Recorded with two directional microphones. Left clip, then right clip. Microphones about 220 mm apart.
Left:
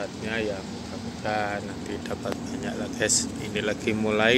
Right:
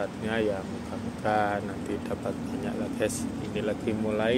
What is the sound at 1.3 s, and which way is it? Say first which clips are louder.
Speech: right 2 dB; 15° right (ahead or behind).